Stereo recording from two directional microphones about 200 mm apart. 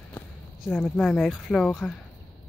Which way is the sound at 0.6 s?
Centre (ahead or behind).